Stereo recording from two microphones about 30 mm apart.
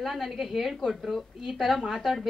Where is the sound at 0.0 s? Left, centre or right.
Centre.